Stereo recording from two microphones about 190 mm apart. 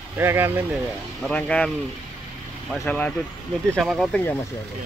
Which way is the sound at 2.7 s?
5° left (ahead or behind).